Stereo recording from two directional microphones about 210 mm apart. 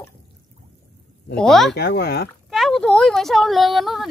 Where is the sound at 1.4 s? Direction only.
Centre (ahead or behind).